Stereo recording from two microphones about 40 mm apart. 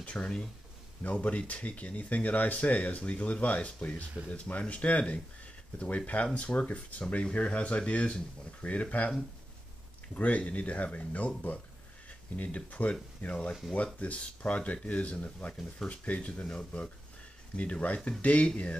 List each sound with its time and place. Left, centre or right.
0.0 s speech: left
10.1 s speech: left